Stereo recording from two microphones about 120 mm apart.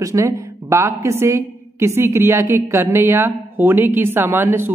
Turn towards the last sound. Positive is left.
turn(degrees=-20)  # may be behind; listen again after turning